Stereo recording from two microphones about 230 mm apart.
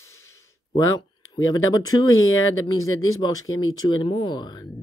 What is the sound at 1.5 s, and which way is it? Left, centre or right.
Speech, centre.